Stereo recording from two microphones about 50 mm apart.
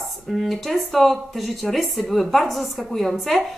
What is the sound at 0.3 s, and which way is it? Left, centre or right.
Speech, centre.